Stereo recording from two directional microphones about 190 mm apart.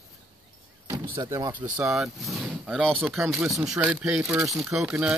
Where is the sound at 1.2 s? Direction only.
15° right (ahead or behind).